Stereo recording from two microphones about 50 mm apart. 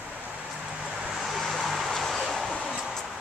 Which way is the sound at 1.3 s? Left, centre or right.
Centre.